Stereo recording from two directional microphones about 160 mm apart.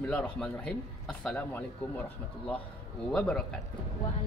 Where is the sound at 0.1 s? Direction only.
10° left (ahead or behind).